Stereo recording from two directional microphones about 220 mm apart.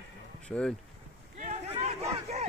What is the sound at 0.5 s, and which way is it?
Speech, 5° left (ahead or behind).